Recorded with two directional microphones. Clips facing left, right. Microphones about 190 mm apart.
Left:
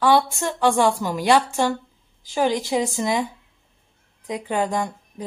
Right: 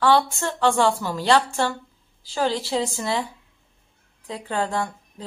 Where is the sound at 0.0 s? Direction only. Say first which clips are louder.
Left 1 dB; 15° left (ahead or behind).